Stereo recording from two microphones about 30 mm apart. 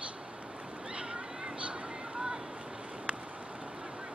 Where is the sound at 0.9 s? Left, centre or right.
Right.